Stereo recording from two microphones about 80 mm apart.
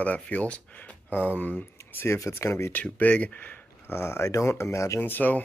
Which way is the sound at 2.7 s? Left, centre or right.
Centre.